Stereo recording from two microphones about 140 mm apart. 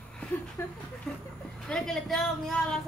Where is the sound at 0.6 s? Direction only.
20° left (ahead or behind).